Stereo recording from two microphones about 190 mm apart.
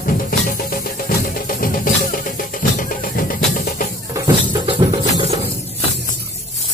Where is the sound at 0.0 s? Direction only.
50° left (ahead or behind).